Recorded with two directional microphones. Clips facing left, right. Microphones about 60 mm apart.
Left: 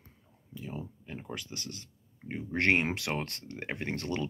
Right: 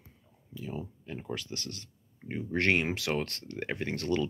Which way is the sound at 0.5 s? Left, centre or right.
Left.